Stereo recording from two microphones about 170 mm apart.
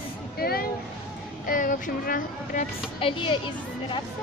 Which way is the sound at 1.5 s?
50° left (ahead or behind).